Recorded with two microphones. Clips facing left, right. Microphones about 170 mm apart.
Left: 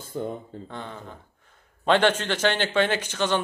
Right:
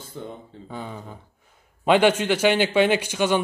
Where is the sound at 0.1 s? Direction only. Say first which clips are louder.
Left 6 dB; 45° left (ahead or behind).